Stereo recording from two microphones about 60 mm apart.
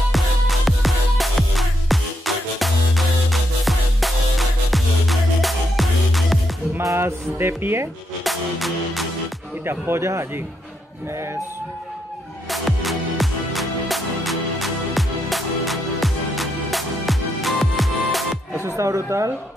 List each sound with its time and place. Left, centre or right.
0.1 s music: centre
6.8 s music: right
8.2 s music: centre
9.7 s speech: right
12.4 s music: centre
18.8 s speech: right
19.0 s speech: right